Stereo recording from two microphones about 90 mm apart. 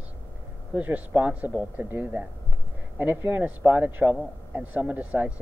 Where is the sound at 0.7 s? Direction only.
15° right (ahead or behind).